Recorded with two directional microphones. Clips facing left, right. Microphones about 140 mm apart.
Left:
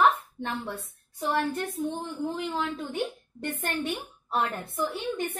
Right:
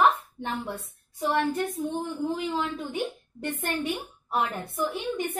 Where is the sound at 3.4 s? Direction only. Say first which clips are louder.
Right 1 dB; 10° right (ahead or behind).